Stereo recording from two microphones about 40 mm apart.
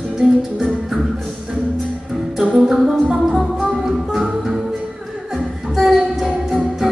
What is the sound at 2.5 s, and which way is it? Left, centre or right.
Music, centre.